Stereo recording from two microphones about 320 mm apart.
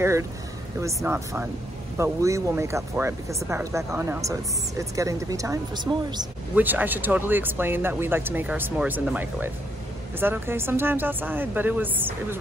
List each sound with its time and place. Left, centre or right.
0.7 s speech: centre